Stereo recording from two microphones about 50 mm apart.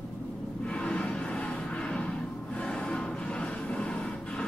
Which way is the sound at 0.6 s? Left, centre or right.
Left.